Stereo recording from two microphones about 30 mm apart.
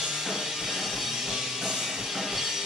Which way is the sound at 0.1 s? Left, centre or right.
Centre.